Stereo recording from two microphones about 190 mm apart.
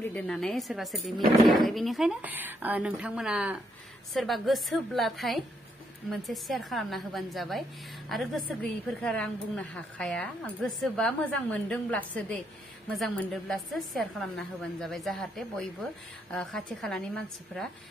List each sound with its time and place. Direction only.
0.1 s speech: 5° left (ahead or behind)